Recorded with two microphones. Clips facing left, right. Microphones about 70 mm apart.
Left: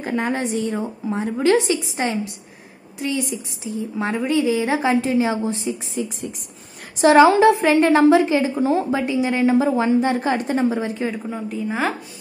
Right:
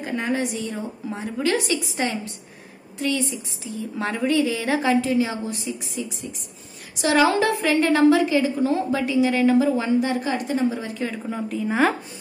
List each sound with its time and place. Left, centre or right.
0.0 s a woman's voice: left
11.2 s a woman's voice: centre